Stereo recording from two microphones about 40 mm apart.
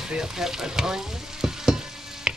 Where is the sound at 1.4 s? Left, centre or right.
Centre.